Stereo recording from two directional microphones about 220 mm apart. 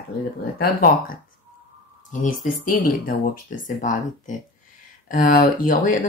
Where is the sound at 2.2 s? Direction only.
40° left (ahead or behind).